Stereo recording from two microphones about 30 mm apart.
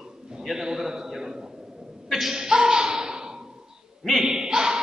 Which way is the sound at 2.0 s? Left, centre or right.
Centre.